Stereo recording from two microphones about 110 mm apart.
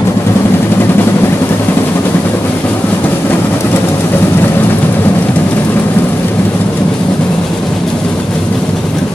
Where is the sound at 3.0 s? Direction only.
20° left (ahead or behind).